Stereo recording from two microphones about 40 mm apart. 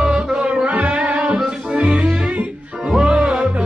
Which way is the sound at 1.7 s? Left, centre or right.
Right.